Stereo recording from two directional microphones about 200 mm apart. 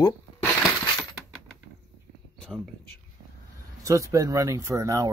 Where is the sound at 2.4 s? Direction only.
Centre (ahead or behind).